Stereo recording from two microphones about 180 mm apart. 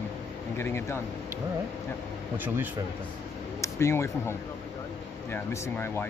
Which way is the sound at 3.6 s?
15° left (ahead or behind).